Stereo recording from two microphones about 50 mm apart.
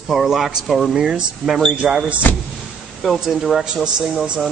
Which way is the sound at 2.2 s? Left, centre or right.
Left.